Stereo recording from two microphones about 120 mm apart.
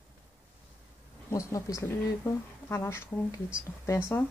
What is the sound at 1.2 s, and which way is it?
Speech, 25° left (ahead or behind).